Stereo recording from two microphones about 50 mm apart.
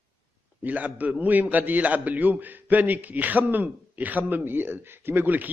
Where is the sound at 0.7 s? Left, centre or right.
Right.